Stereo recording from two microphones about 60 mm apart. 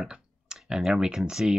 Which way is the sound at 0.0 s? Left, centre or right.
Centre.